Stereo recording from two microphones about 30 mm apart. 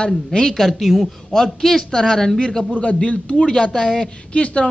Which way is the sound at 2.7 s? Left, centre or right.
Left.